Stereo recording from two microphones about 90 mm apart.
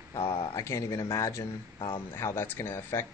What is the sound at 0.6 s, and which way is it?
Speech, 40° left (ahead or behind).